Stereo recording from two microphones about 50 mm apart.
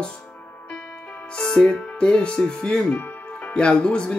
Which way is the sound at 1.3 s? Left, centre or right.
Centre.